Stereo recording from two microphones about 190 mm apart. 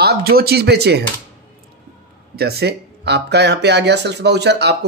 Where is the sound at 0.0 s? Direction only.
55° right (ahead or behind).